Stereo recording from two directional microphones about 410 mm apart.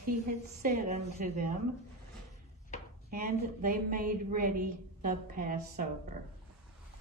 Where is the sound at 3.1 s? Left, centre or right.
Centre.